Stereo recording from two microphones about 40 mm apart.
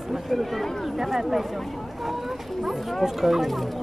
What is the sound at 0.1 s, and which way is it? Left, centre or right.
Speech, centre.